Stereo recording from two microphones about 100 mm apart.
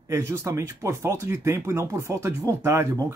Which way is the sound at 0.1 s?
25° right (ahead or behind).